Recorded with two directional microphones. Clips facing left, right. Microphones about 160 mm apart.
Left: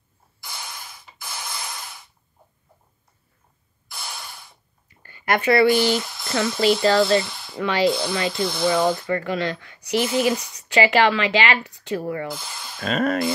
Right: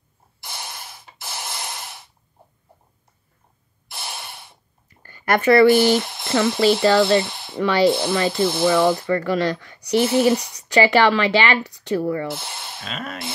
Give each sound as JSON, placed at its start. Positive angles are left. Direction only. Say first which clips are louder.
{"t": 0.5, "sound": "a sound", "louder": "right 2 dB", "side_deg": -25}
{"t": 3.9, "sound": "gasp", "louder": "right 2 dB", "side_deg": -25}
{"t": 4.8, "sound": "a sound", "louder": "right 1 dB", "side_deg": -45}
{"t": 5.9, "sound": "speech", "louder": "right 4 dB", "side_deg": -25}
{"t": 9.0, "sound": "speech", "louder": "right 4 dB", "side_deg": -40}
{"t": 12.8, "sound": "speech", "louder": "left 11 dB", "side_deg": 45}